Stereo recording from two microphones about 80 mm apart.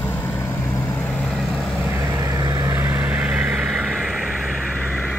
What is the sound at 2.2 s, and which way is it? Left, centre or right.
Vehicle, right.